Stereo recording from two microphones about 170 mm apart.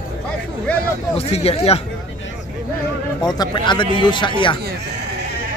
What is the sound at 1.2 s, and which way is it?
Speech, 35° left (ahead or behind).